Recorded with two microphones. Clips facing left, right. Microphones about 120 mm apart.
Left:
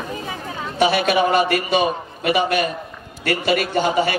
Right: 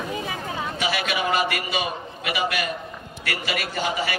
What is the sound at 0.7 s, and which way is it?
A man's voice, 35° left (ahead or behind).